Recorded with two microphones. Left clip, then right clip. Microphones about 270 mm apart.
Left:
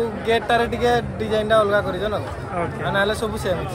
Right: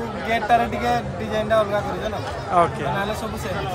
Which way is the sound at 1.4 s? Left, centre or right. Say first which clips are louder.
Left 2 dB; centre.